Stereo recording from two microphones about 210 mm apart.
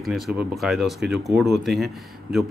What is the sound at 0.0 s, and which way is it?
A man's voice, centre (ahead or behind).